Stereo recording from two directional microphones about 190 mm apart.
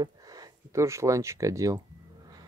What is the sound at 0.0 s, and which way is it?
Speech, 20° right (ahead or behind).